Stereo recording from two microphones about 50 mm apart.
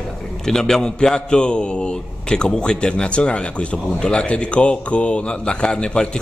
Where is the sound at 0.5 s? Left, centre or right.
Centre.